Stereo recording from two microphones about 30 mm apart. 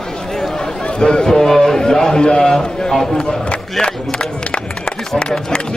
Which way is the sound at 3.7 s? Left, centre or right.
Left.